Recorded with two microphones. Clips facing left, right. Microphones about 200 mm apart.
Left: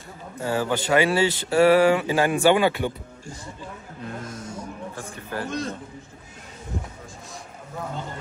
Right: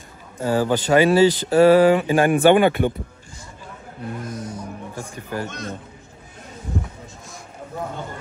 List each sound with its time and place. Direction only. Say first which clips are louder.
0.4 s speech: right 5 dB; 35° right (ahead or behind)
1.8 s mantra: right 4 dB; 20° right (ahead or behind)
2.0 s speech: right 4 dB; 50° right (ahead or behind)
4.9 s speech: right 5 dB; 15° right (ahead or behind)